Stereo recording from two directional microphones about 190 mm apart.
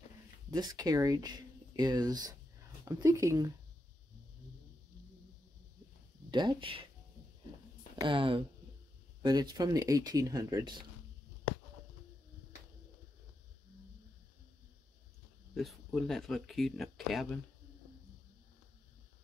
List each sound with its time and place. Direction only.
0.5 s speech: 20° right (ahead or behind)
6.3 s speech: 25° right (ahead or behind)
8.0 s speech: 25° right (ahead or behind)
15.5 s speech: centre (ahead or behind)